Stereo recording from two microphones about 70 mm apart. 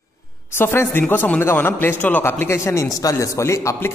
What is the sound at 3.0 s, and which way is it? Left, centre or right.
Speech, left.